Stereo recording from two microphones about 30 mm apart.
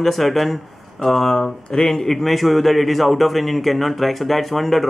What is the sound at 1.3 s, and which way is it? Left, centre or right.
Speech, centre.